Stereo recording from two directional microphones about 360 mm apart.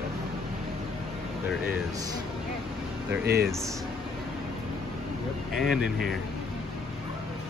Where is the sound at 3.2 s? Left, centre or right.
Right.